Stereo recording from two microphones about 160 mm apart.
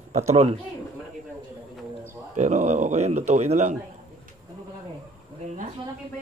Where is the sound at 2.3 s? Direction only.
45° right (ahead or behind).